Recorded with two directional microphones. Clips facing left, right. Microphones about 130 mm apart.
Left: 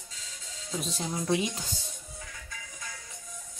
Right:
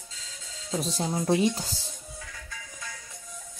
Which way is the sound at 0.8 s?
35° right (ahead or behind).